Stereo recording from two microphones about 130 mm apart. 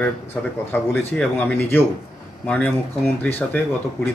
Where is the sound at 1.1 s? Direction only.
10° left (ahead or behind).